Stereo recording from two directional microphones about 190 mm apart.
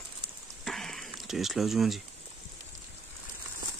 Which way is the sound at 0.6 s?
Centre (ahead or behind).